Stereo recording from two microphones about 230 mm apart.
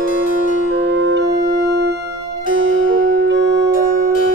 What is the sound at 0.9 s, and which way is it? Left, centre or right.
Music, right.